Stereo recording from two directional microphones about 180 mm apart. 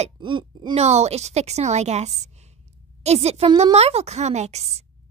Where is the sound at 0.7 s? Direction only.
35° right (ahead or behind).